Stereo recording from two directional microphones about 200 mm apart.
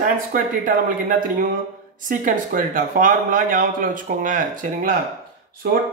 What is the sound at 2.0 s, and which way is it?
Speech, 45° right (ahead or behind).